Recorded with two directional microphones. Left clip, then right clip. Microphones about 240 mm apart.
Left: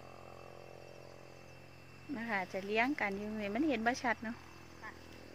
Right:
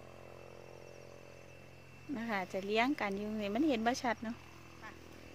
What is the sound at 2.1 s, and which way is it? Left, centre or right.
Speech, centre.